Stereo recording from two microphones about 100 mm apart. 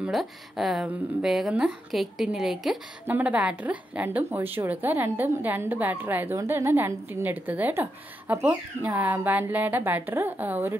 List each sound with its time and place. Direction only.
0.1 s a woman's voice: centre (ahead or behind)
3.1 s a woman's voice: 15° right (ahead or behind)